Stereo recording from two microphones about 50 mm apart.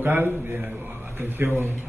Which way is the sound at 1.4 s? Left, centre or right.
Right.